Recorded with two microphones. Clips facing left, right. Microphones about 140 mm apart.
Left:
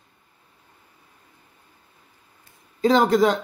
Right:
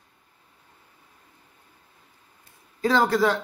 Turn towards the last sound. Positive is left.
turn(degrees=20)  # may be behind; listen again after turning